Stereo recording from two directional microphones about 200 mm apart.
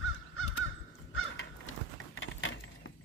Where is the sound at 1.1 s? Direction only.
80° left.